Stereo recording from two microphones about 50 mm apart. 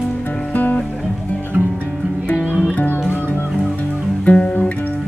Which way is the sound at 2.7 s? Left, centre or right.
Left.